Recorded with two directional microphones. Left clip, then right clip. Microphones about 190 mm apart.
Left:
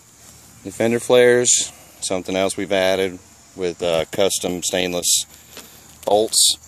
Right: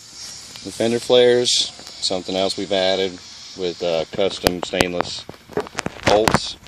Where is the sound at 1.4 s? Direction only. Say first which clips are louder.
Right 1 dB; 40° left (ahead or behind).